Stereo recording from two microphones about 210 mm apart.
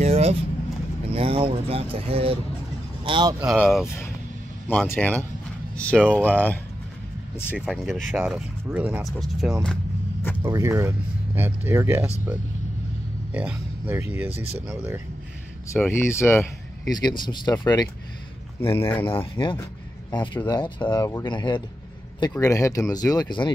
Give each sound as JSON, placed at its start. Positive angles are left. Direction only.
{"t": 0.0, "sound": "vehicle", "side_deg": -30}
{"t": 1.0, "sound": "speech", "side_deg": -25}
{"t": 3.3, "sound": "speech", "side_deg": 0}
{"t": 4.6, "sound": "speech", "side_deg": 10}
{"t": 10.4, "sound": "speech", "side_deg": -15}
{"t": 13.3, "sound": "speech", "side_deg": -5}
{"t": 15.7, "sound": "speech", "side_deg": 10}